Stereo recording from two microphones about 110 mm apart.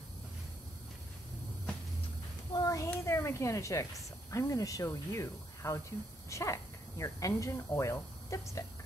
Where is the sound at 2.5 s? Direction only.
30° left (ahead or behind).